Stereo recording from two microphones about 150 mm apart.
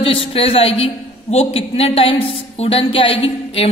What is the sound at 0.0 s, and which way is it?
A man's voice, 40° left (ahead or behind).